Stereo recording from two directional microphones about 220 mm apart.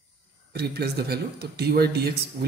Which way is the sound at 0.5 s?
45° right (ahead or behind).